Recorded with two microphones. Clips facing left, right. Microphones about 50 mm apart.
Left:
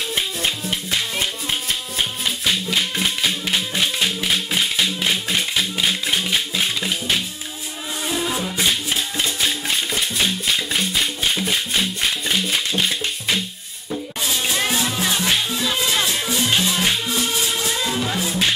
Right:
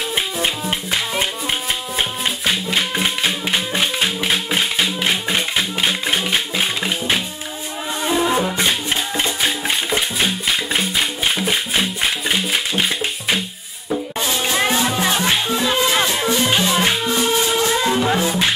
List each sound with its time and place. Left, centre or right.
2.0 s music: centre
8.2 s music: right
8.5 s music: centre
11.8 s music: centre